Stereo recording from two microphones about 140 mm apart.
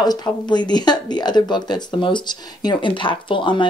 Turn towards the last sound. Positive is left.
turn(degrees=35)  # may be behind; listen again after turning